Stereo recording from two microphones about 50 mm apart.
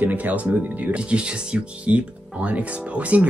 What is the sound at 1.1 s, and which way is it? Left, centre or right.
Speech, right.